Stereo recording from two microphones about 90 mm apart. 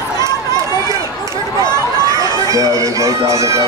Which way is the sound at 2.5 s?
40° right (ahead or behind).